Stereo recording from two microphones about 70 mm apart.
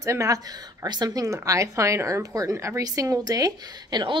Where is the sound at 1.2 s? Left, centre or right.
Right.